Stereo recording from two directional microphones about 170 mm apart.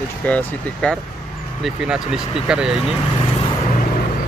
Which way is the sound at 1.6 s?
5° right (ahead or behind).